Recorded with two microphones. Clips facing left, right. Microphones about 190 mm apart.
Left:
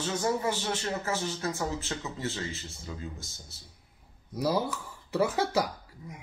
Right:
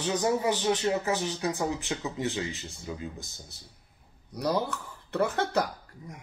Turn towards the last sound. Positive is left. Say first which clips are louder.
# even
turn(degrees=5)  # may be behind; listen again after turning